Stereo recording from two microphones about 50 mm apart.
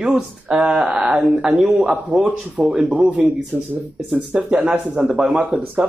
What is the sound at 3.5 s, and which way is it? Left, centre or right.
Speech, right.